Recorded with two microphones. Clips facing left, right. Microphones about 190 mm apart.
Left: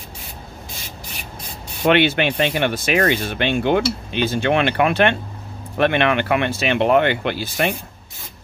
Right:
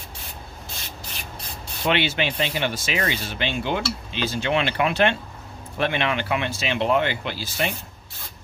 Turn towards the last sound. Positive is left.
turn(degrees=60)  # may be behind; listen again after turning